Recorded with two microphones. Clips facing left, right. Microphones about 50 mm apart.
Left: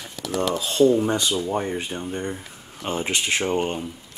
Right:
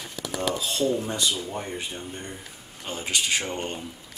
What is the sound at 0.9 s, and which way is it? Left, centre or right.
Speech, left.